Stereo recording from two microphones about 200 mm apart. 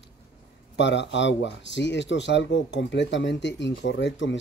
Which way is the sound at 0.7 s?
60° left (ahead or behind).